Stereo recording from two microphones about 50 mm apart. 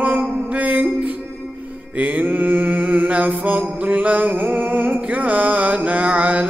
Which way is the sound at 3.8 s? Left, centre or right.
Right.